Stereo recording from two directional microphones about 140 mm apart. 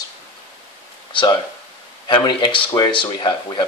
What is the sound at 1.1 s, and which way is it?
Speech, 35° left (ahead or behind).